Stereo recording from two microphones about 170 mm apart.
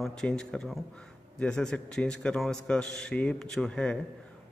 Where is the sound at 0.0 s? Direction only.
5° left (ahead or behind).